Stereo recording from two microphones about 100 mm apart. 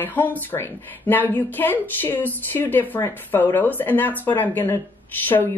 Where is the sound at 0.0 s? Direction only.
20° left (ahead or behind).